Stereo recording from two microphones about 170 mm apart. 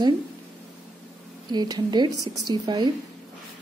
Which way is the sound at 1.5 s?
25° right (ahead or behind).